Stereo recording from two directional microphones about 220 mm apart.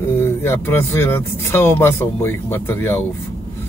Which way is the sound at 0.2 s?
10° left (ahead or behind).